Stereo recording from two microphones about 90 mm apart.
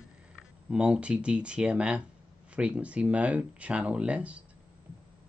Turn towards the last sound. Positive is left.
turn(degrees=-15)  # may be behind; listen again after turning